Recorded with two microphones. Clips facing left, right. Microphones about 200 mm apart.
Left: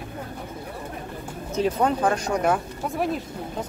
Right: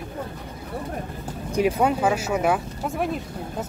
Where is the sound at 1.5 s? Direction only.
10° right (ahead or behind).